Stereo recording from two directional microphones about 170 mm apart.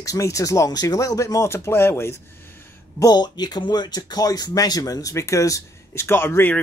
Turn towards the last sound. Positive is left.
turn(degrees=15)  # may be behind; listen again after turning